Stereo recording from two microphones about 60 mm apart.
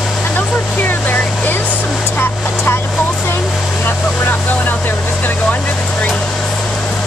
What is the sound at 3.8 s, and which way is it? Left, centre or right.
Vehicle, left.